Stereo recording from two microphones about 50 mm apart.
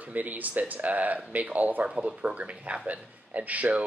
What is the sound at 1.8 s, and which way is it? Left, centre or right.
Speech, centre.